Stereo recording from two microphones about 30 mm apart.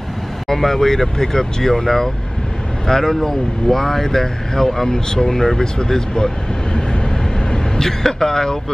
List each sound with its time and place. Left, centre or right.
0.5 s speech: centre
5.8 s vehicle: left
8.0 s speech: centre